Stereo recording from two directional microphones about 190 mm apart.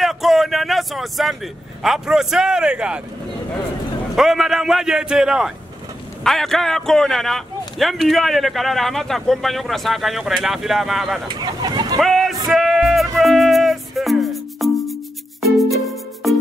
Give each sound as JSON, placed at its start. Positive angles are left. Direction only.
{"t": 0.0, "sound": "speech", "side_deg": 0}
{"t": 4.1, "sound": "a man's voice", "side_deg": 0}
{"t": 11.2, "sound": "a sound", "side_deg": -20}
{"t": 12.0, "sound": "vehicle", "side_deg": 0}
{"t": 12.4, "sound": "music", "side_deg": 0}